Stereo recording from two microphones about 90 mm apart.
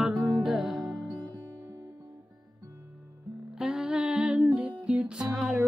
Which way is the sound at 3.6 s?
10° right (ahead or behind).